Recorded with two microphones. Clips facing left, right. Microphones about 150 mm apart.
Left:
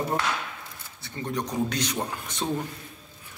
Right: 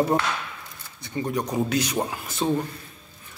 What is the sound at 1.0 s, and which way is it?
A man's voice, 10° right (ahead or behind).